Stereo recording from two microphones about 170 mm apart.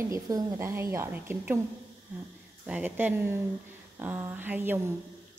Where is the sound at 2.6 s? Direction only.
10° right (ahead or behind).